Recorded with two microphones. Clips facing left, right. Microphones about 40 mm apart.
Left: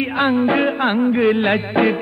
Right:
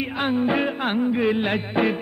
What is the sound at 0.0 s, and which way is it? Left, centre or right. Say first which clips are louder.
Music: left 6 dB; left.